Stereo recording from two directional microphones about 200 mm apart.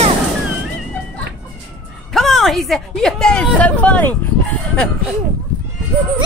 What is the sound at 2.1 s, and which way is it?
Speech, centre (ahead or behind).